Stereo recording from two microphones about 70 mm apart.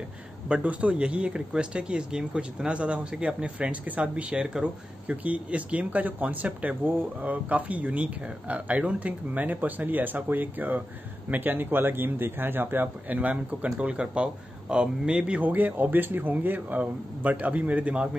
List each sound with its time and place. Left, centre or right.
0.5 s a man's voice: centre